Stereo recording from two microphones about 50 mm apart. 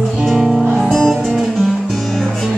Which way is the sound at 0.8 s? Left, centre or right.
Centre.